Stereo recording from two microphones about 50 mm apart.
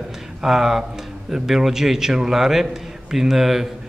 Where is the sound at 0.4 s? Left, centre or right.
Centre.